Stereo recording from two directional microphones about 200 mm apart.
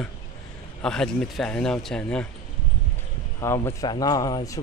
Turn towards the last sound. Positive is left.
turn(degrees=20)  # may be behind; listen again after turning